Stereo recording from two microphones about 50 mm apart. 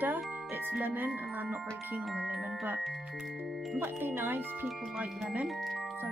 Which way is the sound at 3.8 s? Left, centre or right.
Right.